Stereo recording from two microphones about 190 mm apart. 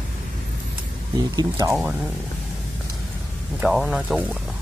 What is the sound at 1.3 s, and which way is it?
Speech, 20° right (ahead or behind).